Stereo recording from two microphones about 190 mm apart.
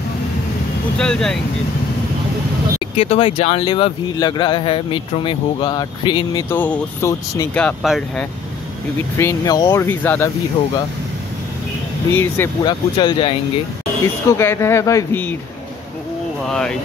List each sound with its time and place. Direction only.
0.9 s speech: 5° left (ahead or behind)
2.8 s speech: 30° left (ahead or behind)
6.5 s speech: 10° left (ahead or behind)
7.5 s speech: 5° left (ahead or behind)
9.2 s speech: 20° left (ahead or behind)
12.1 s speech: 10° left (ahead or behind)
12.6 s speech: 25° left (ahead or behind)
14.0 s speech: 15° left (ahead or behind)
16.4 s speech: 5° left (ahead or behind)